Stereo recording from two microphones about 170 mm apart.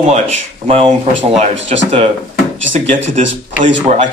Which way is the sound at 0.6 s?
35° right (ahead or behind).